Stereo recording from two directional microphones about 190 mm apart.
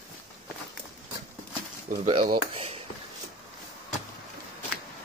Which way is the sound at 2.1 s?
30° right (ahead or behind).